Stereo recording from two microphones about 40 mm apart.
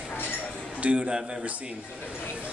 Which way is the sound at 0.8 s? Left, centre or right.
Right.